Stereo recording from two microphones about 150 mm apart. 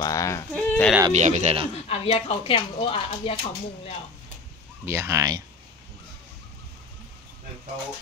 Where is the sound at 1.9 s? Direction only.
40° left (ahead or behind).